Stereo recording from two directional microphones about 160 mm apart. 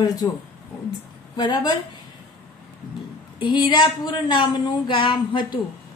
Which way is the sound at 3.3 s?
30° left (ahead or behind).